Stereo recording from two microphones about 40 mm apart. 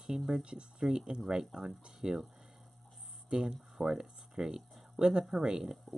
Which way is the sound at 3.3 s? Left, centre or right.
Centre.